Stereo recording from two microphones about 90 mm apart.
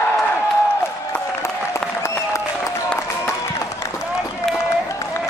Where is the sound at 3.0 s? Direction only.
35° left (ahead or behind).